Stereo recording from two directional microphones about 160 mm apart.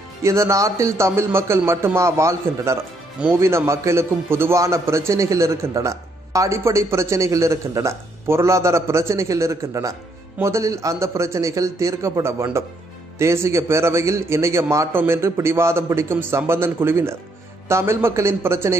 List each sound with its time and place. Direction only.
0.2 s a man's voice: 20° right (ahead or behind)